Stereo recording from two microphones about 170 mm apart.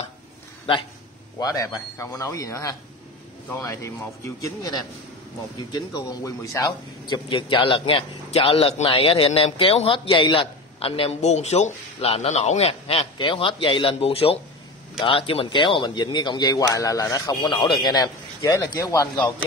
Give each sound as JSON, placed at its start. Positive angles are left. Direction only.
{"t": 1.4, "sound": "a man's voice", "side_deg": 20}